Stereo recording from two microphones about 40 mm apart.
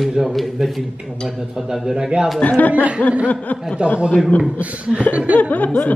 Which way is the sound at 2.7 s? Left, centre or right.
Right.